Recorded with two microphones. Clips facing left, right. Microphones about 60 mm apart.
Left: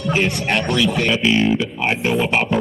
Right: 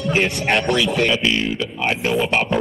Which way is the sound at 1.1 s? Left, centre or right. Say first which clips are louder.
Left 3 dB; centre.